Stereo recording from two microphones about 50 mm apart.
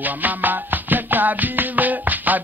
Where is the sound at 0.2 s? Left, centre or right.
Right.